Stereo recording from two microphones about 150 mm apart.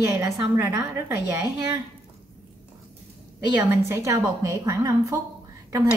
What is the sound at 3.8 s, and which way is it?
A woman's voice, 20° right (ahead or behind).